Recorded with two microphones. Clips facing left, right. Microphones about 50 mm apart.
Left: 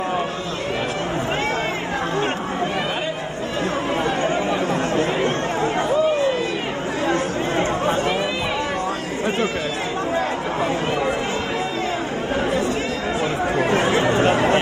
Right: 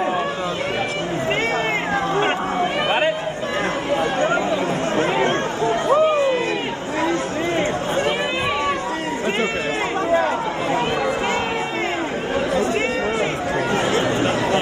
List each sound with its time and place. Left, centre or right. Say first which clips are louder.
5.9 s a sound: right 4 dB; right
7.1 s chatter: left 1 dB; left
13.7 s chatter: left 1 dB; left